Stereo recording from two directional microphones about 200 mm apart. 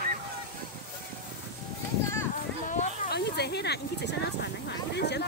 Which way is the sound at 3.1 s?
55° left (ahead or behind).